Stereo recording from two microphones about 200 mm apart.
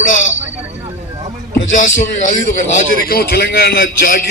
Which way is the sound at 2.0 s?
35° left (ahead or behind).